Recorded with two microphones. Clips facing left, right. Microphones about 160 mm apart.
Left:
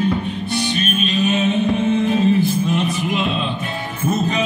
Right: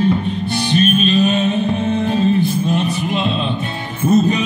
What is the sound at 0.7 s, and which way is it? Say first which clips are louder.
Music: right 6 dB; 35° right (ahead or behind).